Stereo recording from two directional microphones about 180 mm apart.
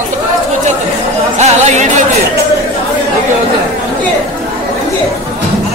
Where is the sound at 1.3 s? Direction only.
40° right (ahead or behind).